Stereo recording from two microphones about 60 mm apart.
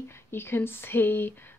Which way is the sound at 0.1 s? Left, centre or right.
Left.